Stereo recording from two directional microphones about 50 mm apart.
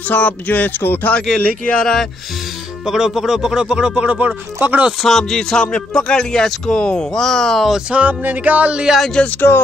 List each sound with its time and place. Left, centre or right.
0.1 s speech: left
1.4 s speech: left
1.8 s speech: centre
2.8 s speech: centre; by 4.8 s right
5.0 s speech: centre
7.9 s music: right
9.2 s speech: centre